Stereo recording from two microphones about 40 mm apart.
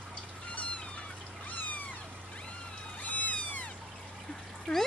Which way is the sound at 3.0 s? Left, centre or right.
Left.